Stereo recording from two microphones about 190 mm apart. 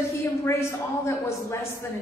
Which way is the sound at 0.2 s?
15° left (ahead or behind).